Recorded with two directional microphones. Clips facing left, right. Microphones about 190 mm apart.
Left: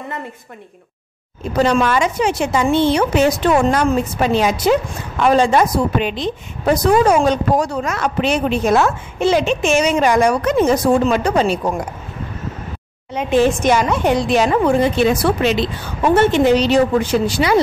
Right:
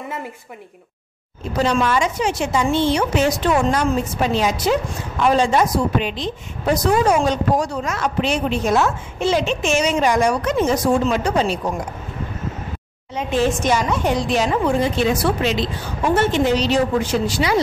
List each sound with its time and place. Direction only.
1.6 s a woman's voice: 55° left (ahead or behind)
13.1 s a woman's voice: 60° left (ahead or behind)